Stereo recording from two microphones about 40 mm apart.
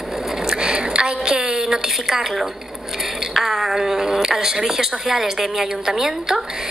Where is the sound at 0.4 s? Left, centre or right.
Centre.